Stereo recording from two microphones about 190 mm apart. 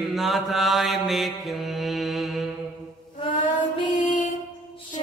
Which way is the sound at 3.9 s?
40° left (ahead or behind).